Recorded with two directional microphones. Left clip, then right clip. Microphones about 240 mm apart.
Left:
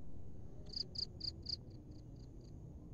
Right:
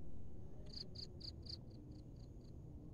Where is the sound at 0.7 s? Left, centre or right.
Right.